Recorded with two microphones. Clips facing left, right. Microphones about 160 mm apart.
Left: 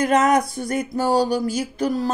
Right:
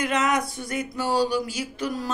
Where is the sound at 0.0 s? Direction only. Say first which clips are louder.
Left 7 dB; 40° left (ahead or behind).